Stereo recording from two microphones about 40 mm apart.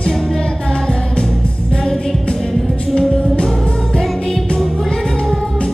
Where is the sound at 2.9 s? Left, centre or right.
Left.